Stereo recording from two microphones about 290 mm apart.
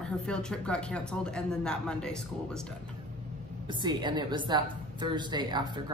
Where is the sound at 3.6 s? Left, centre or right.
Centre.